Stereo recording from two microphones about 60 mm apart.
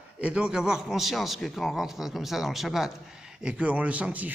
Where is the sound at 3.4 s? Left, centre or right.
Centre.